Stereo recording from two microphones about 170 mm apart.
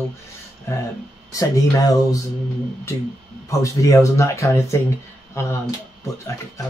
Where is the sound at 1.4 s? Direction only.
20° left (ahead or behind).